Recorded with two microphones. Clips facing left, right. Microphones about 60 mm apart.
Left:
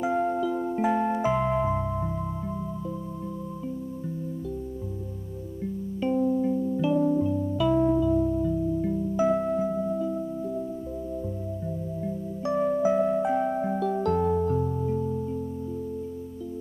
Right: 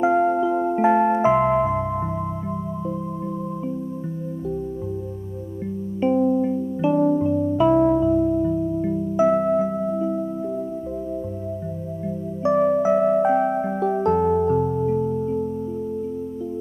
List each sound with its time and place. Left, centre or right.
0.0 s music: right
5.9 s music: right
12.4 s music: right